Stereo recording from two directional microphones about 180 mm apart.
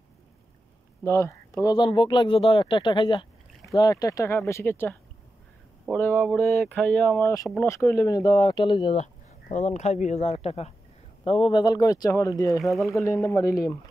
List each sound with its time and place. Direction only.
1.0 s speech: 15° left (ahead or behind)
5.9 s speech: 10° left (ahead or behind)